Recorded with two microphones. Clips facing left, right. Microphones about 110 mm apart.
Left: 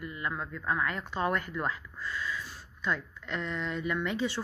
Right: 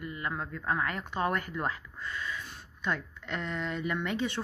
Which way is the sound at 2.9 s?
55° right (ahead or behind).